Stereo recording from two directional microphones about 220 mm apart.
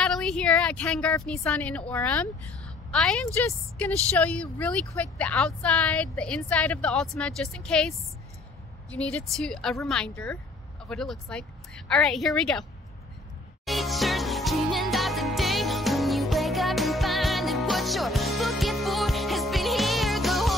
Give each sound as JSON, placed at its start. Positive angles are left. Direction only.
{"t": 0.0, "sound": "a woman's voice", "side_deg": 5}
{"t": 8.9, "sound": "speech", "side_deg": 5}
{"t": 13.7, "sound": "music", "side_deg": 0}